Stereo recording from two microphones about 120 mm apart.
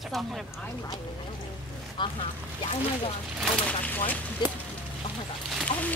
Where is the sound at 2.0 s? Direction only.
40° left (ahead or behind).